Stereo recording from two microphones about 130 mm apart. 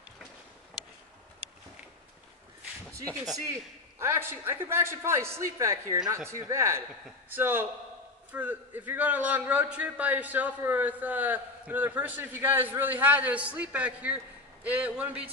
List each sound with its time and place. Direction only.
4.0 s a man's voice: 20° right (ahead or behind)